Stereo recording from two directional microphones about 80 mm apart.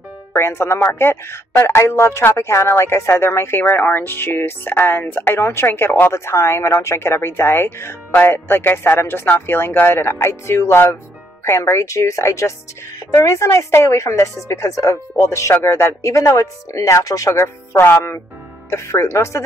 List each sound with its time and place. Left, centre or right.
0.4 s speech: left
17.7 s speech: left